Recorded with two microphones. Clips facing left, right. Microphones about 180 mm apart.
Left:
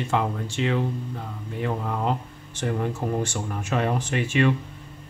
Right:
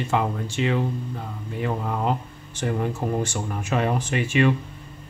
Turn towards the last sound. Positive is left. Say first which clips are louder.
# right 1 dB
turn(degrees=-10)  # may be behind; listen again after turning